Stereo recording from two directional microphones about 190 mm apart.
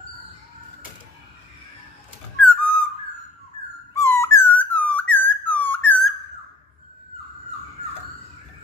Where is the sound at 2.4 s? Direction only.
5° left (ahead or behind).